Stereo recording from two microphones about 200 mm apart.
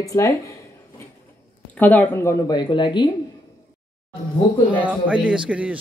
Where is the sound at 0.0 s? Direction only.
15° left (ahead or behind).